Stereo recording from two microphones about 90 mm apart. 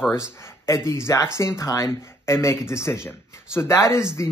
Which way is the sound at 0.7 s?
35° left (ahead or behind).